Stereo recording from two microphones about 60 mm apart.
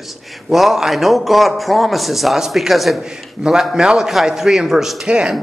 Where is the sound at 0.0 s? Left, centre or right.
Centre.